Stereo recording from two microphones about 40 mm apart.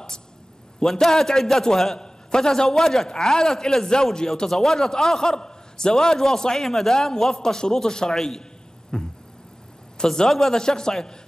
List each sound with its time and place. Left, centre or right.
0.7 s a man's voice: centre
8.9 s a sound: centre
10.0 s a man's voice: centre